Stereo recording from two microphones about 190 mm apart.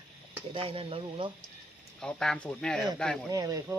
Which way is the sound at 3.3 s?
20° right (ahead or behind).